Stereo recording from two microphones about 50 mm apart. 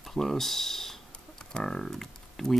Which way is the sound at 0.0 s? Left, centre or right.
Centre.